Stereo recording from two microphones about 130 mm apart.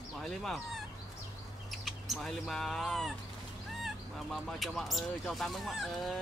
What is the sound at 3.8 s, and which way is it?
Fowl, centre (ahead or behind).